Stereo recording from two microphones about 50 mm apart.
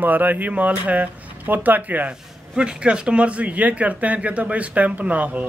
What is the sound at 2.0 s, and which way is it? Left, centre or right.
Speech, right.